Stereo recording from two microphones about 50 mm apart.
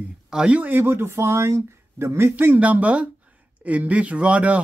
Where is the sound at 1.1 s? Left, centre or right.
Right.